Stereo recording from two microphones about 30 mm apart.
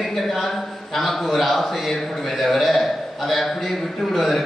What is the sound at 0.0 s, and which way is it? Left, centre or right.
A man's voice, centre.